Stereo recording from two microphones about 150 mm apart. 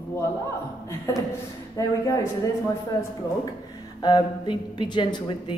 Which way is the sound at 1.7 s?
20° left (ahead or behind).